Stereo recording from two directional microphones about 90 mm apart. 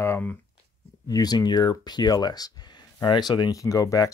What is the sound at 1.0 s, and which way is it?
Speech, 45° left (ahead or behind).